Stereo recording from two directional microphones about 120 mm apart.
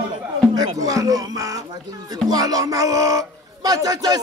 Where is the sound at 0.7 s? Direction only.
30° right (ahead or behind).